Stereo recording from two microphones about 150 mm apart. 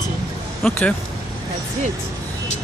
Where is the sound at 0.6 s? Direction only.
5° left (ahead or behind).